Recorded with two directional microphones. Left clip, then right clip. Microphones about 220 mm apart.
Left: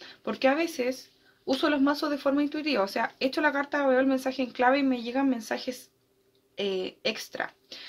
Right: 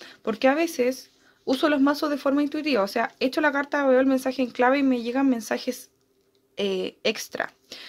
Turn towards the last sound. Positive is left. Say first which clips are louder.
# right 4 dB
turn(degrees=-45)  # may be behind; listen again after turning